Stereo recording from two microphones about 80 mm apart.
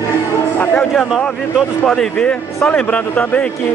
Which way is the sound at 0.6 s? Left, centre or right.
Left.